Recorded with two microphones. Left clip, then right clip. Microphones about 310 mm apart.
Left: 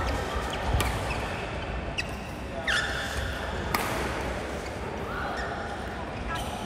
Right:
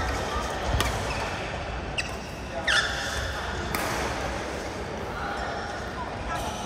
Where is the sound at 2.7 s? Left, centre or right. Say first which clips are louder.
Right 4 dB; right.